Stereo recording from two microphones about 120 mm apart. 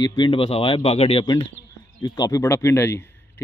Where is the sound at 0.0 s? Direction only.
40° left (ahead or behind); by 1.2 s 55° left (ahead or behind).